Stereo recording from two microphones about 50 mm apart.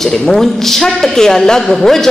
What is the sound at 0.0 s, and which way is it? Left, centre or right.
A woman's voice, centre.